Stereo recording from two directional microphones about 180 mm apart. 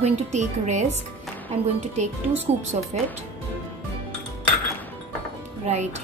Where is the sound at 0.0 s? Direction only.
40° right (ahead or behind).